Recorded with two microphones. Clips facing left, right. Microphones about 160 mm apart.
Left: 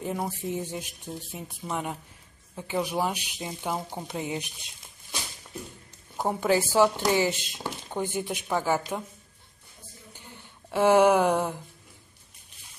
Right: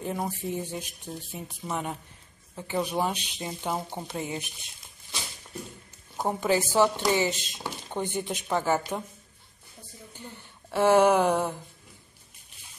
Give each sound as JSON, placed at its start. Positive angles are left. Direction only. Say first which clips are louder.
{"t": 0.0, "sound": "speech", "louder": "even", "side_deg": 5}
{"t": 4.1, "sound": "speech", "louder": "left 3 dB", "side_deg": 15}
{"t": 6.1, "sound": "speech", "louder": "left 1 dB", "side_deg": 10}
{"t": 10.1, "sound": "a sound", "louder": "right 4 dB", "side_deg": 15}